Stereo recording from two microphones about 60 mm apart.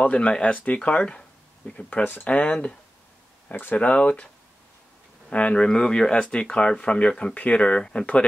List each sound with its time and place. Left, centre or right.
0.0 s speech: left
3.4 s speech: left
5.3 s speech: centre